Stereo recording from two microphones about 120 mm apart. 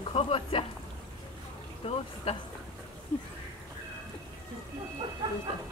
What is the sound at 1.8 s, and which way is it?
Speech, 50° left (ahead or behind).